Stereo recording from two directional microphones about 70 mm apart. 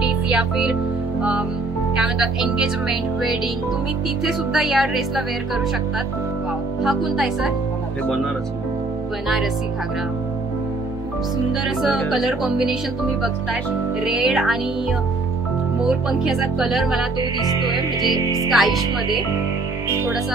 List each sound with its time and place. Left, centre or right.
0.3 s speech: centre
2.0 s speech: centre
6.8 s speech: centre
11.6 s speech: centre
14.0 s speech: centre
15.8 s speech: centre
17.2 s music: right
18.1 s speech: right
18.5 s speech: centre